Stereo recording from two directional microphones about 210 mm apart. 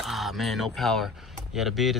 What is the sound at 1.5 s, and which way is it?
Speech, centre (ahead or behind).